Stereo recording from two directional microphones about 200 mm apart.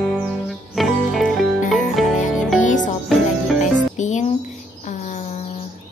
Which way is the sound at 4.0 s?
35° left (ahead or behind).